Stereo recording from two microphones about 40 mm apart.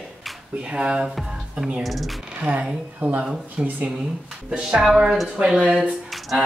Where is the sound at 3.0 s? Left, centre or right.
Right.